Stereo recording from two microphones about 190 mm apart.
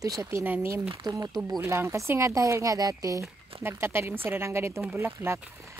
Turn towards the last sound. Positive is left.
turn(degrees=-10)  # may be behind; listen again after turning